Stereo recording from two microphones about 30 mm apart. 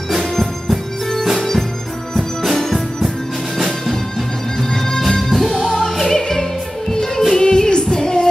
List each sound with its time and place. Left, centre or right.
0.4 s music: centre
3.5 s music: centre
4.6 s music: centre
5.3 s music: centre
5.7 s music: centre